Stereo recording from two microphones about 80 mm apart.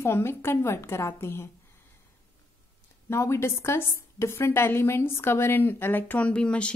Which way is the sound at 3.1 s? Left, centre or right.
Left.